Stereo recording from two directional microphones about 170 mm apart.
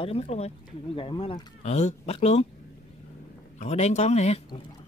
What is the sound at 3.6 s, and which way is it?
Speech, 40° left (ahead or behind).